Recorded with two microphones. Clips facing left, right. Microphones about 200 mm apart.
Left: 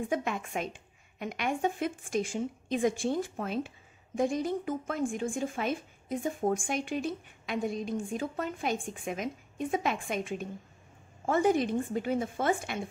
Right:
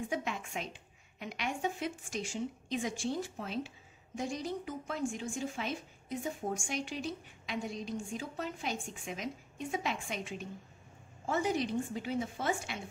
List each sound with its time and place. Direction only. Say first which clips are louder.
0.1 s a woman's voice: left 5 dB; 50° left (ahead or behind)